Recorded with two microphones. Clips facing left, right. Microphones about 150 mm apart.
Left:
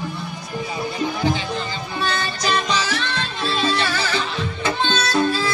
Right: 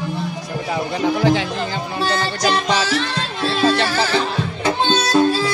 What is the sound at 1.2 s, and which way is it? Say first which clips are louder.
Music: right 5 dB; 90° right.